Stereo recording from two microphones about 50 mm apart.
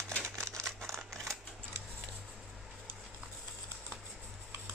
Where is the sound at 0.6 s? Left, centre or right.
Centre.